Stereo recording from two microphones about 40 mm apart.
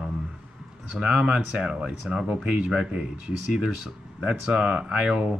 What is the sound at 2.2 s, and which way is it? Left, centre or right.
Speech, right.